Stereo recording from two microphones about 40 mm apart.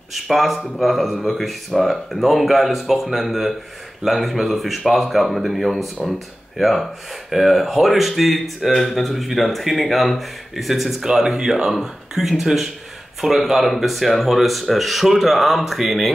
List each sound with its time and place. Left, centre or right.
0.1 s speech: centre
11.3 s speech: centre
11.7 s speech: centre